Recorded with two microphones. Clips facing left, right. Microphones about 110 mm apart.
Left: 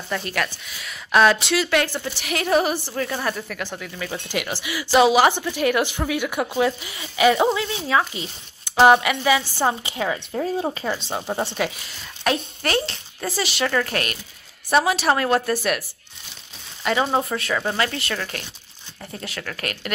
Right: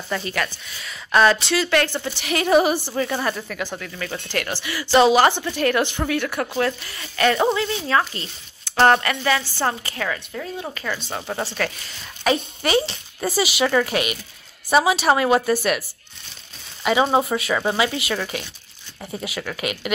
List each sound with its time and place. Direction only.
0.1 s speech: centre (ahead or behind); by 10.2 s 20° left (ahead or behind)
10.3 s speech: 35° left (ahead or behind)
11.1 s speech: 15° left (ahead or behind)
12.2 s speech: centre (ahead or behind)
16.8 s speech: 5° right (ahead or behind)